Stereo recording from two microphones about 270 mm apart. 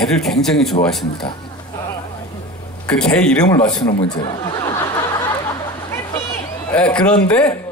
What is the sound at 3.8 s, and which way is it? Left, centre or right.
Speech, centre.